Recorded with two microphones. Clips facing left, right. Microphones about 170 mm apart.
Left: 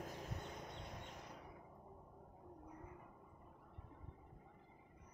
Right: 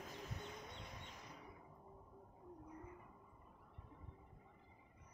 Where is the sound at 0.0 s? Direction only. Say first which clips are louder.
Left 2 dB; 55° left (ahead or behind).